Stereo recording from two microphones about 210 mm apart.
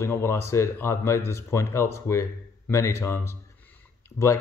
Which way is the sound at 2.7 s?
15° left (ahead or behind).